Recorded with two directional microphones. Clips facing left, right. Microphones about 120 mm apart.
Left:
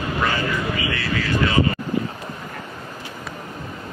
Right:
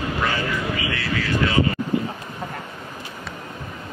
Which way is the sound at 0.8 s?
35° left (ahead or behind).